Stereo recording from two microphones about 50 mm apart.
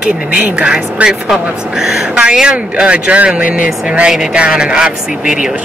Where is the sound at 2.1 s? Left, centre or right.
Centre.